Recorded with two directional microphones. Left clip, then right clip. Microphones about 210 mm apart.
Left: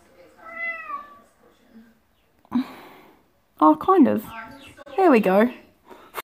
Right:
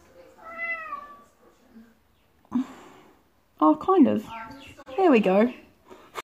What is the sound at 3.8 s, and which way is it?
Speech, 15° left (ahead or behind).